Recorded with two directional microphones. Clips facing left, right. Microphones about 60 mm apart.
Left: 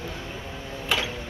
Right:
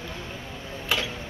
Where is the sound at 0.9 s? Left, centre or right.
Centre.